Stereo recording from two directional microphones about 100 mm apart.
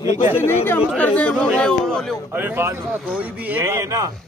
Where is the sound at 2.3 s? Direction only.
20° right (ahead or behind).